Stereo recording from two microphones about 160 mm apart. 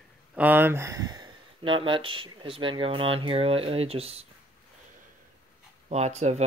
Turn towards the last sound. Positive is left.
turn(degrees=-45)  # may be behind; listen again after turning